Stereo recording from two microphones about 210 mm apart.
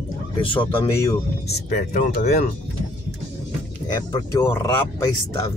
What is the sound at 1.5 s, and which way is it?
Speech, 35° left (ahead or behind).